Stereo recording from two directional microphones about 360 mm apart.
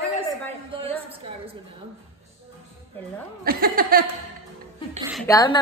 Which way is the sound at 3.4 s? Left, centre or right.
Right.